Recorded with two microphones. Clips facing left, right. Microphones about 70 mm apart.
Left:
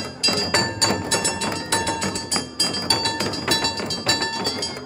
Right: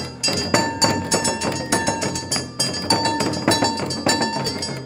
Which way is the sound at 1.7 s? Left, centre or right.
Centre.